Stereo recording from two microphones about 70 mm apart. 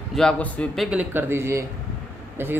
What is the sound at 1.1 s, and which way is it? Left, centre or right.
Speech, right.